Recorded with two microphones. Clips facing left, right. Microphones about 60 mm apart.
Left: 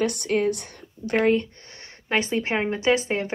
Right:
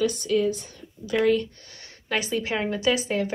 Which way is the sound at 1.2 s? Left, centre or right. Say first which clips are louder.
Left 1 dB; left.